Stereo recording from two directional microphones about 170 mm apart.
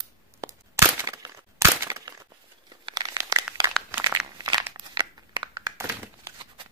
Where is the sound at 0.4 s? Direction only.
20° right (ahead or behind).